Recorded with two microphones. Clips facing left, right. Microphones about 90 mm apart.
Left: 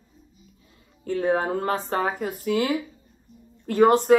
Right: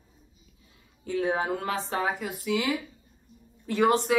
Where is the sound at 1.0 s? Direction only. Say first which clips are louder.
Left 4 dB; 45° left (ahead or behind).